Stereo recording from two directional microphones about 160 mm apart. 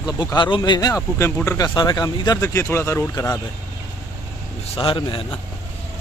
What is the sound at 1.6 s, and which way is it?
Speech, 25° left (ahead or behind).